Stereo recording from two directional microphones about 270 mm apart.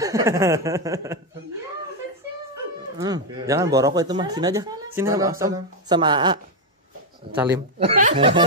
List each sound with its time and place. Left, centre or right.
0.0 s speech: centre
3.0 s speech: centre
7.8 s speech: right